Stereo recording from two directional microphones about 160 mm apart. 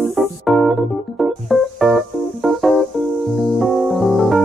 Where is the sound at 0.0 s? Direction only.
Centre (ahead or behind).